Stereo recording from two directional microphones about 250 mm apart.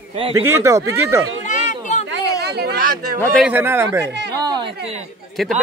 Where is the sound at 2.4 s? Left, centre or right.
Right.